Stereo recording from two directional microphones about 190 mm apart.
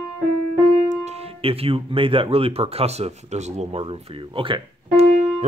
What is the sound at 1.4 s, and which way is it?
Speech, 30° right (ahead or behind).